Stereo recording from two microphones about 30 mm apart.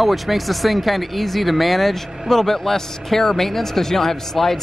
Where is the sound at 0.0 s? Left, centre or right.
Centre.